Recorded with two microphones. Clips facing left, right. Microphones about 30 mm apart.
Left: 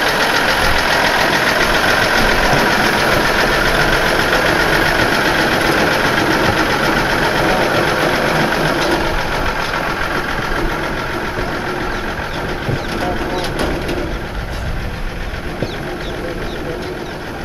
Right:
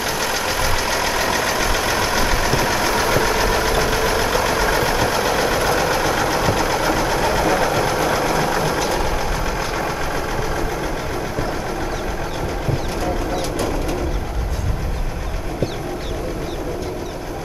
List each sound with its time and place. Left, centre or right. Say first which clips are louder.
0.0 s vehicle: left 7 dB; left
12.9 s vehicle: left 4 dB; left